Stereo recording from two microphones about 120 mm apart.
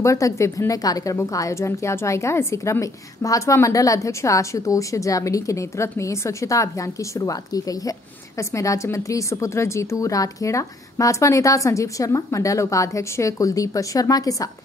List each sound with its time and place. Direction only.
0.0 s a woman's voice: 25° left (ahead or behind)